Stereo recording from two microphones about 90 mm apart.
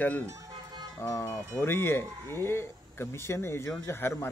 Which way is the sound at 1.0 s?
35° left (ahead or behind).